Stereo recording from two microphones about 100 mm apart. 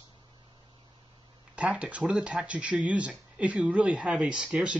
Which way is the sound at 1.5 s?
10° right (ahead or behind).